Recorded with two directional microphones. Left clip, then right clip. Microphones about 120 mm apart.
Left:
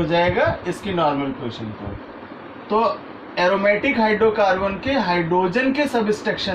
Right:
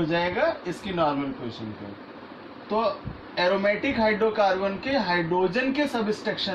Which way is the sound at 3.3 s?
10° right (ahead or behind).